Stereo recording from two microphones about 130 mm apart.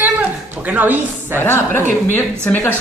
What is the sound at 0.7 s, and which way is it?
Speech, 15° right (ahead or behind).